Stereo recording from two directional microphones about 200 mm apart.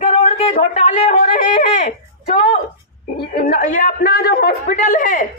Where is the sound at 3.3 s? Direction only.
45° left (ahead or behind).